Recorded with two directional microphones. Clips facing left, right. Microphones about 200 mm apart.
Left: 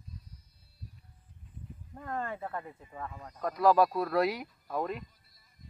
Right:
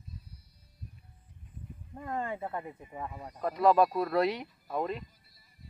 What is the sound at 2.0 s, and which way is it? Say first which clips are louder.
Speech: right 2 dB; 15° right (ahead or behind).